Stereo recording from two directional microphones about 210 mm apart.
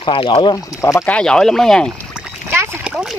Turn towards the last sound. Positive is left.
turn(degrees=-5)  # may be behind; listen again after turning